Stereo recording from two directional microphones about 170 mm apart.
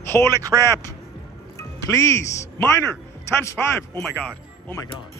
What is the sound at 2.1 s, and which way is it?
Speech, 20° left (ahead or behind).